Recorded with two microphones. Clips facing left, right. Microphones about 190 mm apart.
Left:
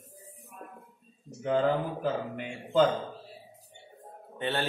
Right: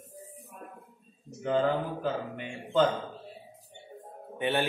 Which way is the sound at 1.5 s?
5° left (ahead or behind).